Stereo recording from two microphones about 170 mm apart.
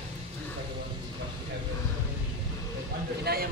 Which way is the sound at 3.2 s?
65° right (ahead or behind).